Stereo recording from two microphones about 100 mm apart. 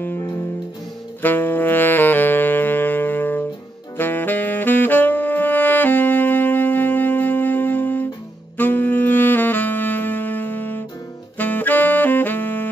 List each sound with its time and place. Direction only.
0.0 s music: 25° left (ahead or behind)
1.2 s saxophone: 20° left (ahead or behind)
8.5 s music: 20° left (ahead or behind)
11.3 s saxophone: 15° left (ahead or behind)